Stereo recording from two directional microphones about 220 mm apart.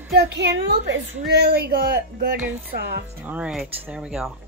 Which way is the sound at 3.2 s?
5° right (ahead or behind).